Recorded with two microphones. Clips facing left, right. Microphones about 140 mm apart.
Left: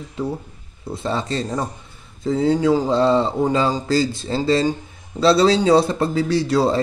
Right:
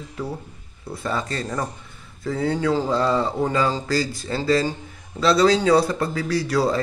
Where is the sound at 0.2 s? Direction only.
25° left (ahead or behind).